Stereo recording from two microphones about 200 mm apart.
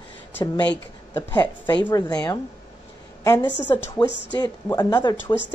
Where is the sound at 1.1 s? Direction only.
20° left (ahead or behind).